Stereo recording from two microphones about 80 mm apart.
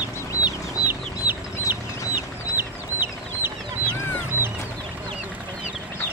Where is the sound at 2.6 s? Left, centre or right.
Right.